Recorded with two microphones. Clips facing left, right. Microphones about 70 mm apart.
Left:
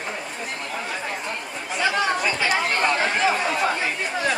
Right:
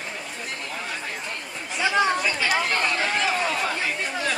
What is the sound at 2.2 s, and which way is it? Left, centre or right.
Chatter, centre.